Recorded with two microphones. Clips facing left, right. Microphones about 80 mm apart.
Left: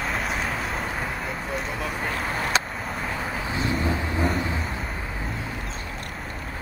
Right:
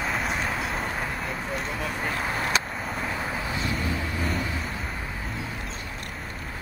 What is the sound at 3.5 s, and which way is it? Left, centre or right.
Vehicle, left.